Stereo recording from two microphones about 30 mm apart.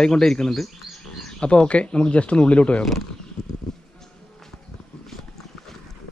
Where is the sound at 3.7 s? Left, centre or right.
Centre.